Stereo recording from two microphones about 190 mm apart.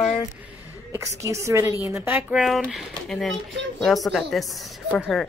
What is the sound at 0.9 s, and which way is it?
A woman's voice, 15° right (ahead or behind).